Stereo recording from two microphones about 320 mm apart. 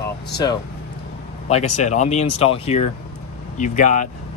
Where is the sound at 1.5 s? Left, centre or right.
Left.